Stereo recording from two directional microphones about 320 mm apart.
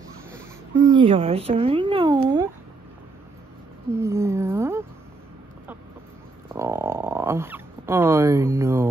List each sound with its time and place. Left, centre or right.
0.7 s speech: centre
4.0 s speech: centre
6.5 s a sound: centre